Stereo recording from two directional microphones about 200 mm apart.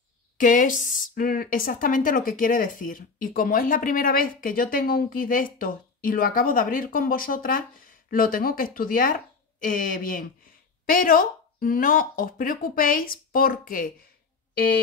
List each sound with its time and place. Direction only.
0.4 s speech: 40° left (ahead or behind)